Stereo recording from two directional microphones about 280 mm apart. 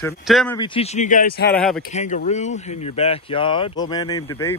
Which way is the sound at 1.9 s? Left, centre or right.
Left.